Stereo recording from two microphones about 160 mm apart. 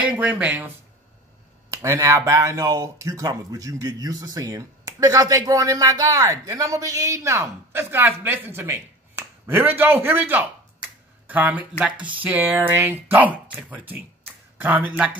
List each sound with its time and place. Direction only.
0.0 s speech: 10° right (ahead or behind)
1.7 s speech: 20° right (ahead or behind)